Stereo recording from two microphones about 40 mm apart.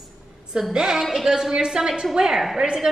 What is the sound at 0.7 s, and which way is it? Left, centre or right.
A woman's voice, centre.